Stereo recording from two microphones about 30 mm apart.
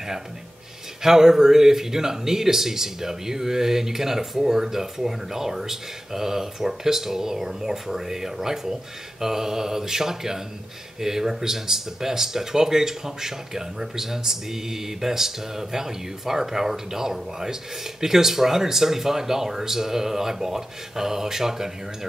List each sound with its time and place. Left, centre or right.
1.0 s speech: centre